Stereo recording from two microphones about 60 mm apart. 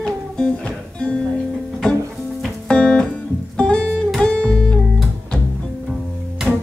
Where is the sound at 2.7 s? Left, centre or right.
Centre.